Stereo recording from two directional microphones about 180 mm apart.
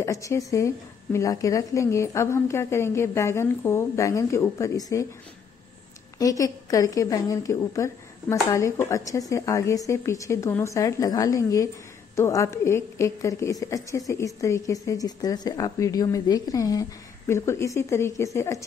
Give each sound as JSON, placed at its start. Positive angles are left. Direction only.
{"t": 0.0, "sound": "a woman's voice", "side_deg": 15}
{"t": 6.1, "sound": "a woman's voice", "side_deg": 20}